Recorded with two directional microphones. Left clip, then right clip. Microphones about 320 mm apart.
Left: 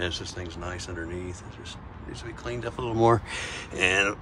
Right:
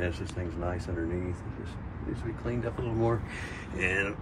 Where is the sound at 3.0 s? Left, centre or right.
Centre.